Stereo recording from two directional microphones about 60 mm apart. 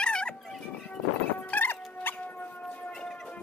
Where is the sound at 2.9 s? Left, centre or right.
Centre.